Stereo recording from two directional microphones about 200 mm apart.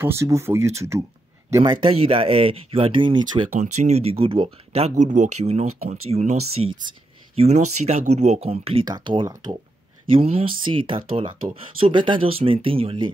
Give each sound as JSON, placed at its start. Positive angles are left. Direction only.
{"t": 0.0, "sound": "speech", "side_deg": -15}
{"t": 1.6, "sound": "speech", "side_deg": -25}
{"t": 3.5, "sound": "speech", "side_deg": -35}
{"t": 6.9, "sound": "a sound", "side_deg": -30}
{"t": 7.8, "sound": "speech", "side_deg": -35}